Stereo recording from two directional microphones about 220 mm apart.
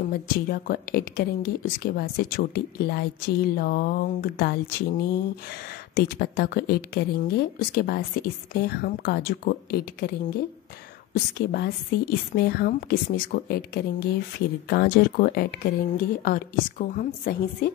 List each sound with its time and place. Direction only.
0.1 s speech: 40° left (ahead or behind)
11.3 s a woman's voice: 45° left (ahead or behind)